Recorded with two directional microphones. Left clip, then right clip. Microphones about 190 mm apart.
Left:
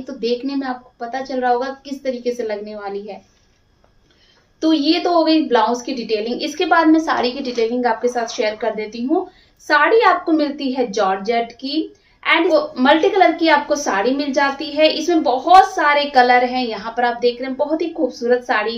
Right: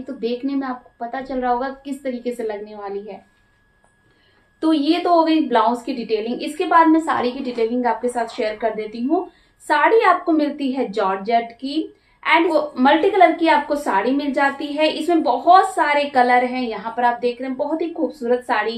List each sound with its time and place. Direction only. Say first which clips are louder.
0.0 s a woman's voice: left 3 dB; centre (ahead or behind)
4.6 s a woman's voice: left 2 dB; 5° right (ahead or behind)